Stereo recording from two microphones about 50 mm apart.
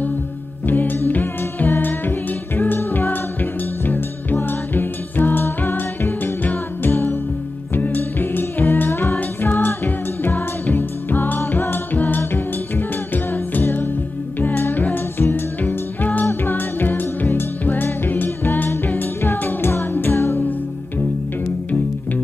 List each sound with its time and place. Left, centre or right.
0.7 s music: left
6.9 s music: left
7.7 s music: left
15.1 s music: left
15.6 s music: left